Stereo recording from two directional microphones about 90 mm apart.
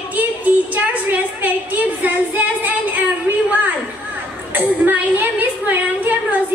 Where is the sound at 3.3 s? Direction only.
20° right (ahead or behind).